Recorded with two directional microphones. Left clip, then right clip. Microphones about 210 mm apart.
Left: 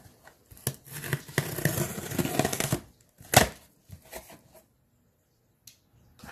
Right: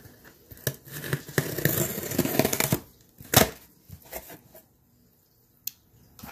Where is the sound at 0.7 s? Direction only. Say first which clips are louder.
Right 3 dB; 5° left (ahead or behind).